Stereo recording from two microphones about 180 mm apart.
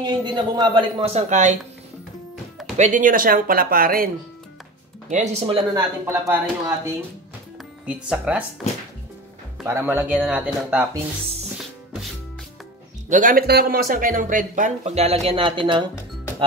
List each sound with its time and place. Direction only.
0.0 s speech: 25° right (ahead or behind); by 1.6 s 40° right (ahead or behind)
2.8 s speech: 45° right (ahead or behind)
5.1 s speech: 40° right (ahead or behind)
5.8 s speech: 15° right (ahead or behind)
7.8 s speech: 5° right (ahead or behind)
9.7 s speech: 10° right (ahead or behind)
13.1 s speech: 50° right (ahead or behind); by 15.8 s 30° right (ahead or behind)